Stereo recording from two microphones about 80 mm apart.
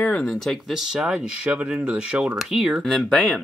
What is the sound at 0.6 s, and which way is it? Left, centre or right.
Speech, centre.